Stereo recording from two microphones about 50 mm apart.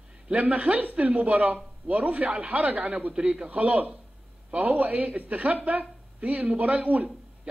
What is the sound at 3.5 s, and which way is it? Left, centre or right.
Speech, right.